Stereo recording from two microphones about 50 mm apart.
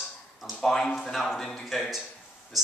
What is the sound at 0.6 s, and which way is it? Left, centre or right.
Speech, centre.